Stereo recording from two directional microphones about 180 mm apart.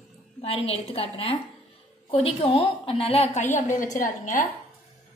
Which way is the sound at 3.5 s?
45° left (ahead or behind).